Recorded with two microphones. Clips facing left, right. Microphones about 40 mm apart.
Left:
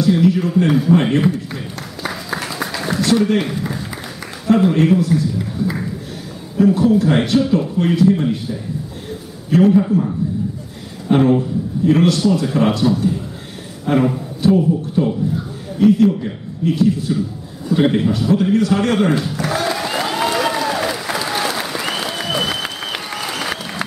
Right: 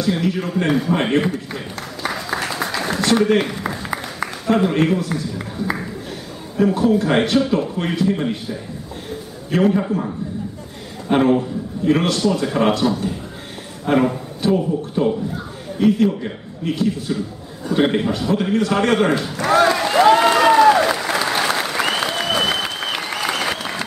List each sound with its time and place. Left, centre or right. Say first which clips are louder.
0.2 s a man's voice: left 5 dB; centre
2.0 s a sound: right 1 dB; centre
3.0 s a man's voice: even; right
4.5 s a man's voice: left 3 dB; centre
5.1 s a man's voice: left 6 dB; right
9.5 s a man's voice: left 4 dB; centre
19.7 s applause: right 3 dB; centre
20.0 s applause: right 8 dB; centre